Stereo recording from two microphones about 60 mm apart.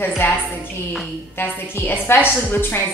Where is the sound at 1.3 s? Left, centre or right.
Left.